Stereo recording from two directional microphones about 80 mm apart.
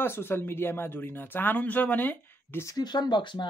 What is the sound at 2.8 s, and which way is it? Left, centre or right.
Speech, left.